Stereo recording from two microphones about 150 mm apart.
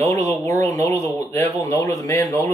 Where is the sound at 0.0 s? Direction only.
20° left (ahead or behind).